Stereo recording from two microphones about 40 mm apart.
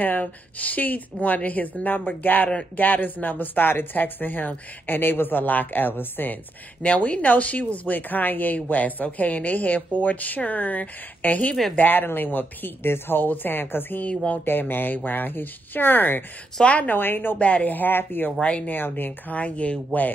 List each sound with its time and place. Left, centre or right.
0.0 s a woman's voice: left
6.8 s a woman's voice: left
14.0 s a woman's voice: left
14.4 s speech: left
17.4 s a woman's voice: left
17.6 s speech: left
18.4 s speech: left
18.7 s speech: left
19.3 s a woman's voice: left